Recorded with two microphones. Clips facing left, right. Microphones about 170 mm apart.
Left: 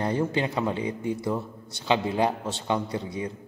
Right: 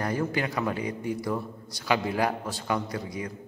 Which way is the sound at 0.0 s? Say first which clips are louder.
Left 2 dB; 25° left (ahead or behind).